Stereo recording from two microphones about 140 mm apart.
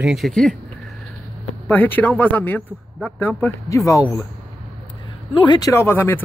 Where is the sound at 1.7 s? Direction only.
15° left (ahead or behind).